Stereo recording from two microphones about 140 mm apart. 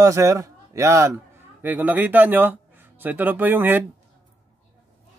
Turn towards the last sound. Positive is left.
turn(degrees=-15)  # may be behind; listen again after turning